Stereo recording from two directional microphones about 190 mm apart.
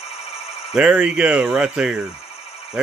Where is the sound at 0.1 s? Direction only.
35° left (ahead or behind).